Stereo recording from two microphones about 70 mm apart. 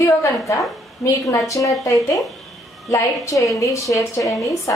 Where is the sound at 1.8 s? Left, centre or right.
Left.